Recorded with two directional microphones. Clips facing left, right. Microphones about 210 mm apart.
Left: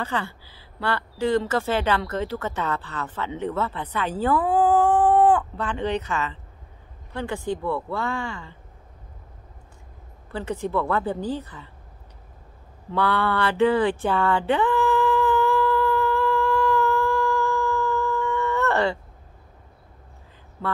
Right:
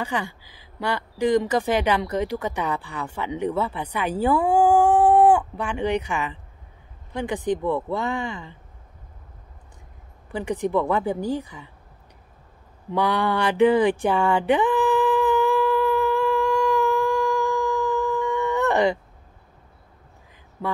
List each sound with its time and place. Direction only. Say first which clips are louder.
0.0 s speech: right 1 dB; 15° right (ahead or behind)
10.3 s speech: right 3 dB; 15° right (ahead or behind)
12.9 s a sound: right 1 dB; 15° right (ahead or behind)
20.6 s speech: right 1 dB; 15° right (ahead or behind)